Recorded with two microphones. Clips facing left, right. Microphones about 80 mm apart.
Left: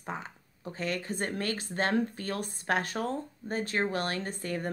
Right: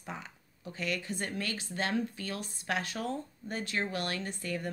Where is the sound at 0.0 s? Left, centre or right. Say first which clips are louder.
Left 5 dB; left.